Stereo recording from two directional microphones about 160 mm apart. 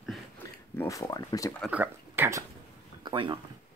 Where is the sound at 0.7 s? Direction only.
20° left (ahead or behind).